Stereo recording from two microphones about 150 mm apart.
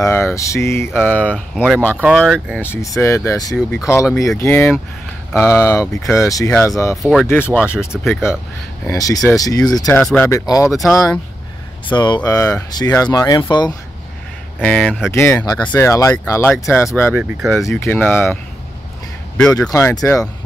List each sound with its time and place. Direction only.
0.0 s speech: 20° left (ahead or behind)
3.5 s speech: 5° left (ahead or behind); by 7.0 s 20° left (ahead or behind)
7.0 s speech: centre (ahead or behind)
7.2 s speech: 15° left (ahead or behind)
9.8 s speech: 5° left (ahead or behind)
10.2 s speech: 20° left (ahead or behind)
10.7 s speech: centre (ahead or behind)
11.9 s speech: 30° left (ahead or behind)
14.6 s speech: 10° left (ahead or behind)
17.1 s speech: 10° right (ahead or behind)
17.6 s speech: 20° left (ahead or behind)
19.5 s speech: 20° left (ahead or behind)